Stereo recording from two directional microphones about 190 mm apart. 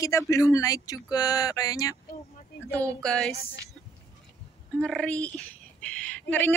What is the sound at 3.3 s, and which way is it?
Speech, 55° left (ahead or behind).